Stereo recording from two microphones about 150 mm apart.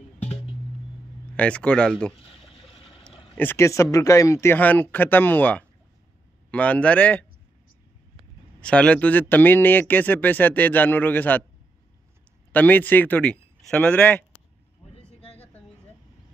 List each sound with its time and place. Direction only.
1.3 s speech: 10° left (ahead or behind)
3.3 s speech: 15° left (ahead or behind)
8.5 s speech: 5° left (ahead or behind)
12.5 s speech: 10° left (ahead or behind)
15.0 s a sound: 40° left (ahead or behind)